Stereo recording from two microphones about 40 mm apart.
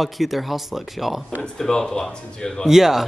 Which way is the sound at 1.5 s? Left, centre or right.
Centre.